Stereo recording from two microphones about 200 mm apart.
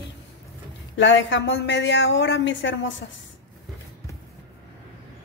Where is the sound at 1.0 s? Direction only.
65° left (ahead or behind).